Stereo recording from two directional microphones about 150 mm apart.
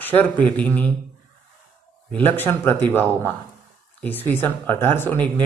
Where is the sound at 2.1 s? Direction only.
10° left (ahead or behind).